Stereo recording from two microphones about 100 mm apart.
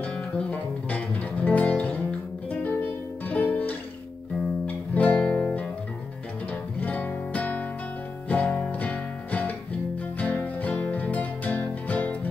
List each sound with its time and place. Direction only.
0.0 s guitar: 10° left (ahead or behind)
2.6 s music: 15° left (ahead or behind)
6.8 s music: 15° left (ahead or behind)